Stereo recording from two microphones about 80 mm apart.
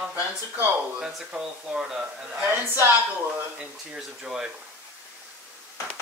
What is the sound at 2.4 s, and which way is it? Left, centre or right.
Speech, right.